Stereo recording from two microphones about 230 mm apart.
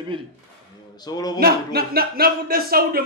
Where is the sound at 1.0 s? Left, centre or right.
Centre.